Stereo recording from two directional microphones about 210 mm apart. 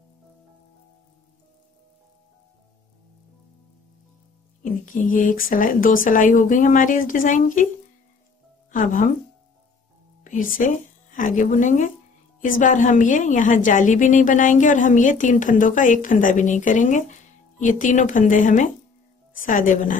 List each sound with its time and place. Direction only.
4.6 s a woman's voice: 40° left (ahead or behind)
8.7 s a woman's voice: 40° left (ahead or behind)
10.2 s a woman's voice: 40° left (ahead or behind)